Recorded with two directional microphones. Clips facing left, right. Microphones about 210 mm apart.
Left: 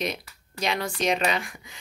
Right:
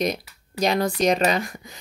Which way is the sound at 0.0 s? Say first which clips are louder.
Right 6 dB; 40° right (ahead or behind).